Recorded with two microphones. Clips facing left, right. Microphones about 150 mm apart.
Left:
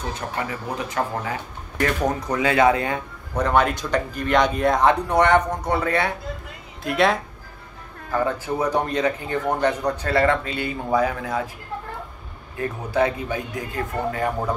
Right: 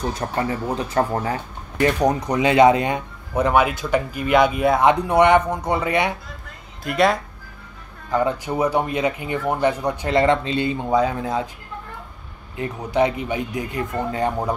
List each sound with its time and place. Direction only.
0.1 s speech: 35° right (ahead or behind)
1.8 s speech: 20° right (ahead or behind)
3.3 s speech: 10° right (ahead or behind)
6.8 s speech: centre (ahead or behind)
8.1 s speech: 20° right (ahead or behind)
12.5 s speech: 20° right (ahead or behind)